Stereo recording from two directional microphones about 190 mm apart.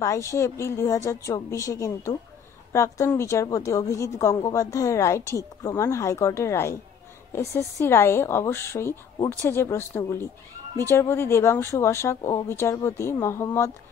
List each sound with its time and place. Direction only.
0.0 s a woman's voice: 15° left (ahead or behind)